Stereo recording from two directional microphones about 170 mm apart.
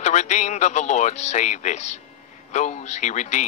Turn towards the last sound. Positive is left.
turn(degrees=45)  # may be behind; listen again after turning